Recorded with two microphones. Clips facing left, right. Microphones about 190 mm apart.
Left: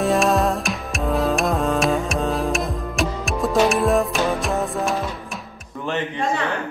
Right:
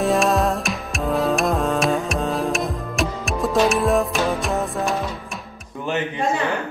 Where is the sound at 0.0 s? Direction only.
Centre (ahead or behind).